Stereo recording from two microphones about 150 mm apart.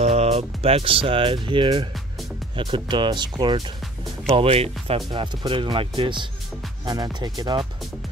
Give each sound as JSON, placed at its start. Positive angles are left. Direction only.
{"t": 0.0, "sound": "speech", "side_deg": -45}
{"t": 4.4, "sound": "speech", "side_deg": -40}